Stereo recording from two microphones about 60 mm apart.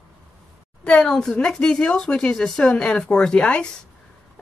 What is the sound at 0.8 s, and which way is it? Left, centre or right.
Speech, centre.